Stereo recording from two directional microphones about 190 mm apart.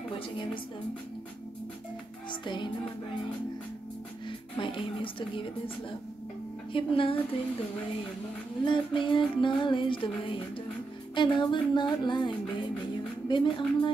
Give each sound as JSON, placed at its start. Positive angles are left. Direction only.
{"t": 2.4, "sound": "music", "side_deg": 25}
{"t": 4.6, "sound": "music", "side_deg": 25}
{"t": 6.7, "sound": "music", "side_deg": 30}
{"t": 8.6, "sound": "music", "side_deg": 25}